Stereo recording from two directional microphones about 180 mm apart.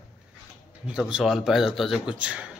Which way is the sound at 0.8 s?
5° right (ahead or behind).